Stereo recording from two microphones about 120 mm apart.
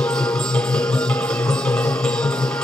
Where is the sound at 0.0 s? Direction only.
5° left (ahead or behind).